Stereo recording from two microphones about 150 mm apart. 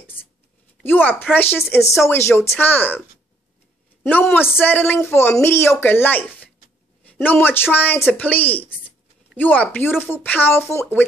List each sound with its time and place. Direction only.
0.0 s a sound: 15° left (ahead or behind)
0.8 s speech: 15° left (ahead or behind)
4.0 s speech: 15° left (ahead or behind)